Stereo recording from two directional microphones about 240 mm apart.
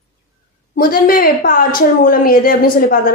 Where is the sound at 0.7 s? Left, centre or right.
Left.